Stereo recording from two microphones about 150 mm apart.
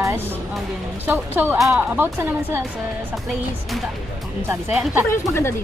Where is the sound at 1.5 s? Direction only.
Centre (ahead or behind).